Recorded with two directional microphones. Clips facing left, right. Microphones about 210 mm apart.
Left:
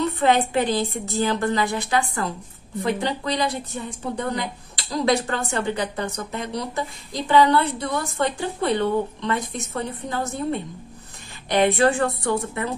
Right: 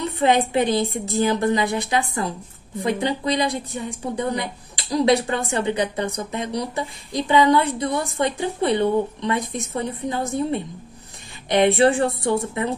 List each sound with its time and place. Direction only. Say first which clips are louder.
0.0 s a woman's voice: even; 15° right (ahead or behind)